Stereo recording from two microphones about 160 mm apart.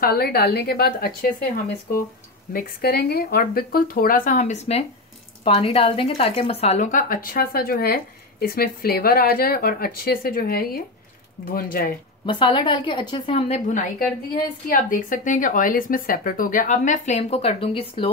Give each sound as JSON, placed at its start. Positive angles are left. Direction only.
{"t": 0.0, "sound": "a woman's voice", "side_deg": 75}
{"t": 2.5, "sound": "a woman's voice", "side_deg": 70}
{"t": 12.3, "sound": "a woman's voice", "side_deg": 30}
{"t": 13.4, "sound": "a woman's voice", "side_deg": 45}